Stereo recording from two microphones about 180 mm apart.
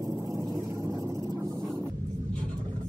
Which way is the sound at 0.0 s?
20° right (ahead or behind).